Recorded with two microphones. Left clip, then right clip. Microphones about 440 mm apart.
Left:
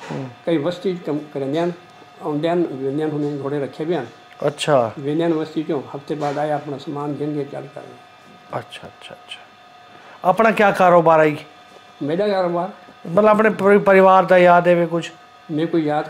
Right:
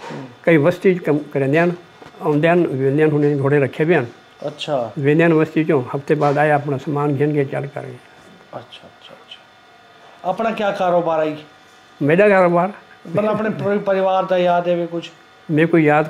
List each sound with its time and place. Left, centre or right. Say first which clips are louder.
0.5 s speech: right 7 dB; right
4.4 s speech: left 5 dB; left
5.0 s speech: right 6 dB; right
8.5 s a man's voice: left 5 dB; left
10.2 s a man's voice: left 5 dB; left
12.1 s speech: right 7 dB; right
13.1 s a man's voice: left 5 dB; left
15.5 s speech: right 6 dB; right